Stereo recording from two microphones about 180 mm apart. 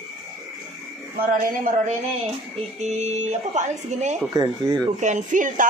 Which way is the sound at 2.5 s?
40° right (ahead or behind).